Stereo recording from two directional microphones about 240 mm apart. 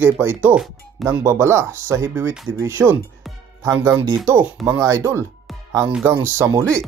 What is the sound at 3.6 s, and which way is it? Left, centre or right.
Speech, centre.